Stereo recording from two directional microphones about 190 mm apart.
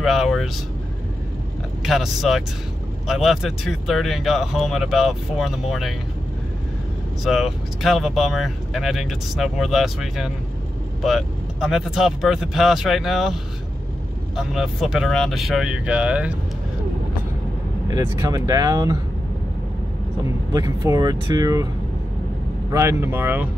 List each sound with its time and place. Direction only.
0.0 s speech: centre (ahead or behind)
1.8 s speech: centre (ahead or behind)
7.2 s speech: centre (ahead or behind)
17.8 s speech: 20° right (ahead or behind)
20.5 s speech: 20° right (ahead or behind)
22.7 s speech: 15° right (ahead or behind)